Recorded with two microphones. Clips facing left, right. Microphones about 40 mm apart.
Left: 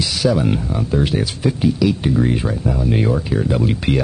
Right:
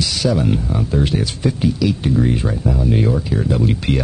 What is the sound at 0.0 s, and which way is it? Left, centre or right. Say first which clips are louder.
Speech: left 1 dB; centre.